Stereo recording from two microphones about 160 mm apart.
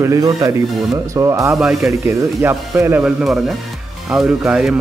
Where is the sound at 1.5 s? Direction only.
5° right (ahead or behind).